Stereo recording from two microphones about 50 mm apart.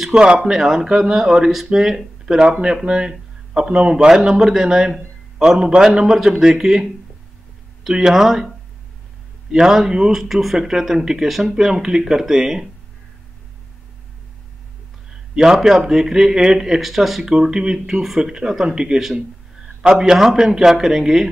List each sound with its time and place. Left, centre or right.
0.0 s speech: centre
0.4 s speech: centre
15.3 s speech: centre